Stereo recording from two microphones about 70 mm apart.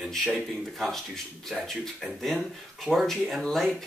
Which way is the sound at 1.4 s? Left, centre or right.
Centre.